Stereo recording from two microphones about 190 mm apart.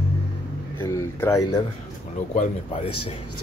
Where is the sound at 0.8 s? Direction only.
15° left (ahead or behind).